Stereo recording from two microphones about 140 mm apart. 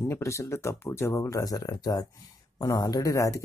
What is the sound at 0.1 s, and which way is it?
Speech, 20° left (ahead or behind).